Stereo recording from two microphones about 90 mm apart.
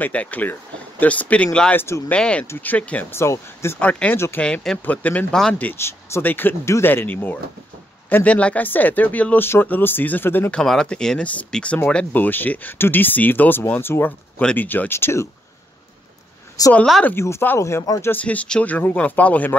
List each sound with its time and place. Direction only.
0.0 s speech: 15° left (ahead or behind)
1.8 s speech: 30° left (ahead or behind)
2.0 s speech: 10° left (ahead or behind)
2.4 s speech: 25° left (ahead or behind)
3.1 s speech: 30° left (ahead or behind)
3.8 s speech: 15° left (ahead or behind)
5.8 s speech: 30° left (ahead or behind)
10.5 s speech: 5° left (ahead or behind); by 15.2 s 25° left (ahead or behind)
16.6 s speech: 40° left (ahead or behind)
17.0 s speech: 25° left (ahead or behind)
18.0 s speech: 20° left (ahead or behind)